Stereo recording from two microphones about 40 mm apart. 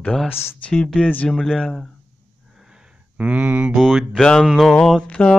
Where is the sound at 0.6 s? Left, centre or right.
Left.